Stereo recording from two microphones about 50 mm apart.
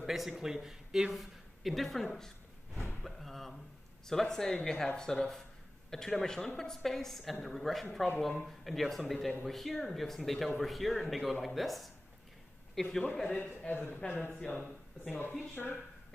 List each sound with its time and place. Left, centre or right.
0.0 s speech: centre
3.0 s a sound: centre
4.1 s a woman's voice: centre
13.7 s speech: left